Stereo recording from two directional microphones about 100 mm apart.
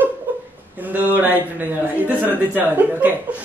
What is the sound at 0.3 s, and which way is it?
Chuckle, 20° right (ahead or behind).